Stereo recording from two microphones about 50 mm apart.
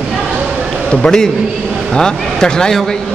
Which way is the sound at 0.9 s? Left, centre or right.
Centre.